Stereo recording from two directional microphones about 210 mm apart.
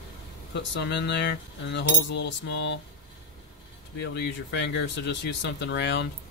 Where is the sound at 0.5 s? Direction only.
55° left (ahead or behind).